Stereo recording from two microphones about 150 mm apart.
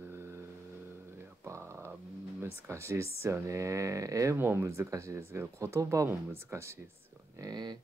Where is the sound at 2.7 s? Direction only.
20° right (ahead or behind).